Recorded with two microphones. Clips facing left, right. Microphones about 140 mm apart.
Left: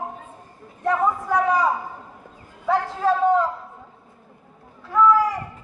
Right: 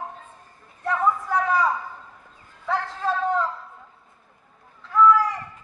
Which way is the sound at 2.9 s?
10° left (ahead or behind).